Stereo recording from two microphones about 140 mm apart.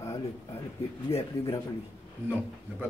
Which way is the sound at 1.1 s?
45° left (ahead or behind).